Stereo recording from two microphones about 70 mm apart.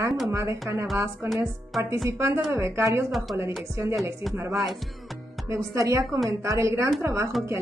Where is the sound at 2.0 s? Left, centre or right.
Right.